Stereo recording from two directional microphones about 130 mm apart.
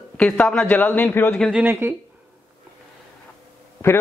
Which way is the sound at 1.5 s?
15° right (ahead or behind).